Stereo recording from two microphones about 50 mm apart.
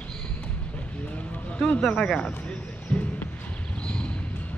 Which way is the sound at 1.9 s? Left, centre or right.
Centre.